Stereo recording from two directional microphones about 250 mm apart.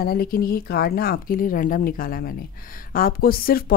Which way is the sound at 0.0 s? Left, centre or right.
Left.